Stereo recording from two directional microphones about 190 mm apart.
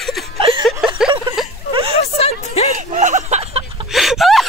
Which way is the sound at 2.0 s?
35° left (ahead or behind).